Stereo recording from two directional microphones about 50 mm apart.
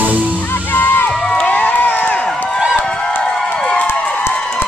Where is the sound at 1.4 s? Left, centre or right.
Left.